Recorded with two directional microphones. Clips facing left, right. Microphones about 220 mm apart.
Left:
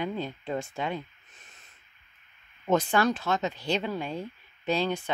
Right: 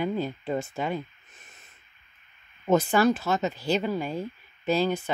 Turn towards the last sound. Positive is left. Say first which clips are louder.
# right 3 dB
turn(degrees=-5)  # may be behind; listen again after turning